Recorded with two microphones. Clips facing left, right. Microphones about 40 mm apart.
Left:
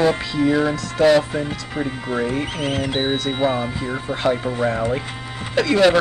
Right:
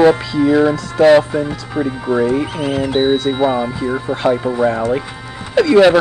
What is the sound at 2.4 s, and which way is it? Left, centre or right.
Speech, left.